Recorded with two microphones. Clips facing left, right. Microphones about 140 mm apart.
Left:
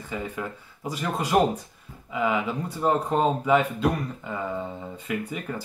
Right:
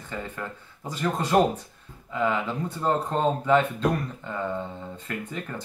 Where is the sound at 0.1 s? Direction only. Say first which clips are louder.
Left 2 dB; 10° left (ahead or behind).